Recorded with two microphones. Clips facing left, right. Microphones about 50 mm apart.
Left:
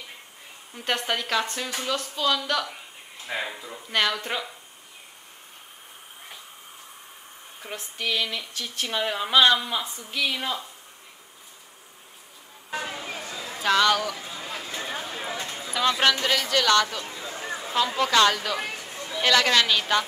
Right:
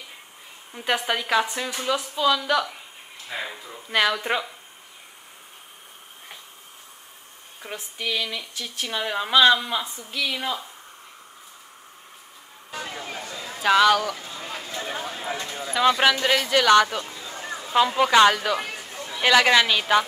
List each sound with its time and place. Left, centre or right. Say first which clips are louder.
0.7 s speech: right 2 dB; centre
3.3 s speech: left 1 dB; centre
3.9 s speech: right 3 dB; centre
7.6 s speech: even; centre
12.9 s a sound: right 1 dB; centre
15.8 s speech: right 3 dB; centre
17.3 s a sound: left 1 dB; centre
17.7 s speech: right 4 dB; centre